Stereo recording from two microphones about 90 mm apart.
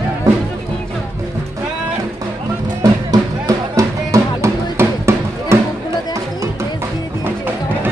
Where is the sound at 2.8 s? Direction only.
45° right (ahead or behind).